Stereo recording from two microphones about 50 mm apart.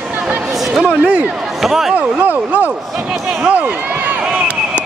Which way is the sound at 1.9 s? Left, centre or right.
Right.